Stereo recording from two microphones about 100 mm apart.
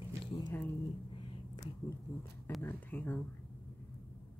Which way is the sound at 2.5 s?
20° left (ahead or behind).